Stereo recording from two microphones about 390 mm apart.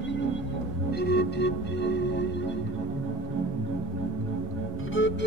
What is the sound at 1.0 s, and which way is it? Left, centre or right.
Music, left.